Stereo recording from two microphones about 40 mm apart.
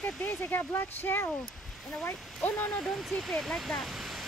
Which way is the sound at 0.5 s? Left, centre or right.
Left.